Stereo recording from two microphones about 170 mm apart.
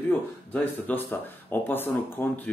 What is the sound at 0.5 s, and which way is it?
Speech, 10° left (ahead or behind).